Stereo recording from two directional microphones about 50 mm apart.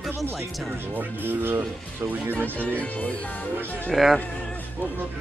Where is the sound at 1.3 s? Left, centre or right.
Right.